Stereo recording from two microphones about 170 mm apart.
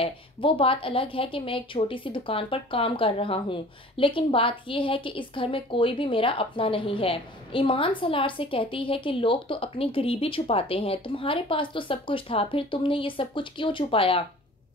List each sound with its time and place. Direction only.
0.0 s speech: 30° left (ahead or behind)